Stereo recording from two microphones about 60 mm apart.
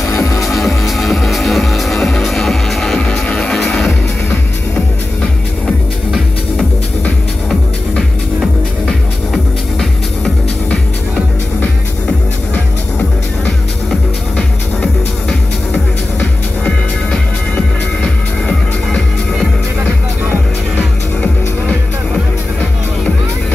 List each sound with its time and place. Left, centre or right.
0.1 s music: left
0.6 s music: centre
3.0 s music: centre
5.7 s music: centre
9.3 s music: centre
10.7 s music: centre
14.3 s music: centre
20.7 s music: left